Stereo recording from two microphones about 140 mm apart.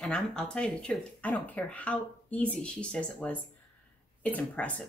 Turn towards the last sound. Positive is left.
turn(degrees=10)  # may be behind; listen again after turning